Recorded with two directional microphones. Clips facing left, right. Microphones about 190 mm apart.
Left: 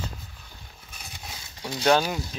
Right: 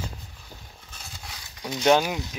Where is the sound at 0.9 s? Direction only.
20° left (ahead or behind).